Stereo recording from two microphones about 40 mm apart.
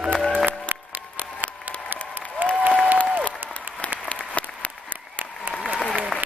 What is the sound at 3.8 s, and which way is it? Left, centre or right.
Applause, left.